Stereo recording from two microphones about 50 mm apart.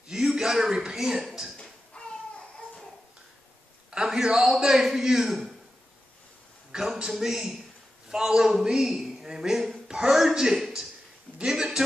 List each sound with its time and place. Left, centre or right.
0.1 s speech: centre
2.0 s baby cry: centre
3.9 s a man's voice: centre
6.7 s a man's voice: centre